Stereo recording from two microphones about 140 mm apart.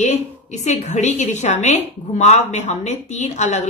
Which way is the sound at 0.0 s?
55° left (ahead or behind).